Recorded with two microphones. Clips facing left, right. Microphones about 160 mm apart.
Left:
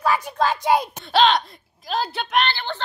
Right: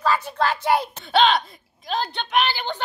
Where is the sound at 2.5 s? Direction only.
15° right (ahead or behind).